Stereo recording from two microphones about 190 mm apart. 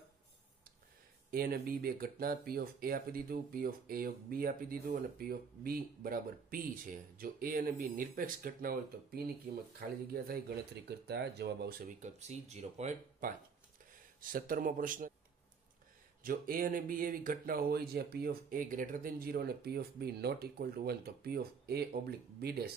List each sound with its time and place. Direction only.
1.3 s speech: 50° right (ahead or behind)
12.0 s speech: 35° right (ahead or behind)
16.2 s speech: 50° right (ahead or behind)